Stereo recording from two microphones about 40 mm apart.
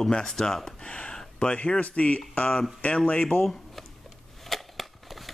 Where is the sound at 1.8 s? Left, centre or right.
Left.